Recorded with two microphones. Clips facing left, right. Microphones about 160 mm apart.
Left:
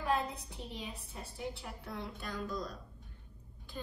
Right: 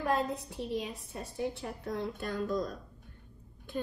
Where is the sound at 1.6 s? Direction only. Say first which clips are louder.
Right 7 dB; 40° right (ahead or behind).